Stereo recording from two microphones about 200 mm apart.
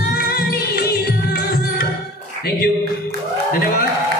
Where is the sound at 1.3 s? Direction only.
50° left (ahead or behind).